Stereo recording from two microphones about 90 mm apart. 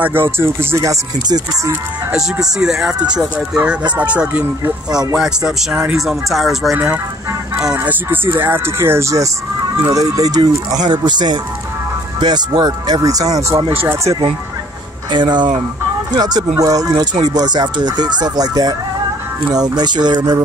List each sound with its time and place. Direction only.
0.0 s speech: 25° right (ahead or behind)
2.1 s speech: 5° right (ahead or behind)
5.1 s speech: 5° right (ahead or behind)
7.6 s speech: 15° right (ahead or behind); by 13.7 s 40° right (ahead or behind)
15.0 s speech: 55° right (ahead or behind)